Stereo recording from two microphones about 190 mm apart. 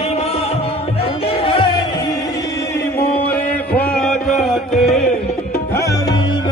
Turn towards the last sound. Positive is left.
turn(degrees=15)  # may be behind; listen again after turning